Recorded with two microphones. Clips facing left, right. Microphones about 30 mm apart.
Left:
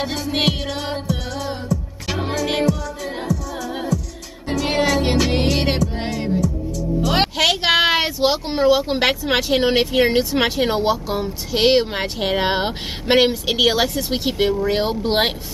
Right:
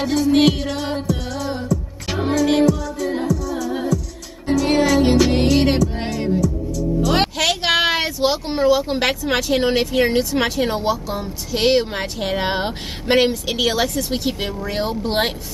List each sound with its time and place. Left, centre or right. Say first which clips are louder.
0.0 s speech: right 5 dB; centre
1.3 s music: right 2 dB; centre
4.6 s music: right 1 dB; left
5.2 s music: right 3 dB; centre
6.4 s music: right 2 dB; left
7.1 s speech: left 2 dB; centre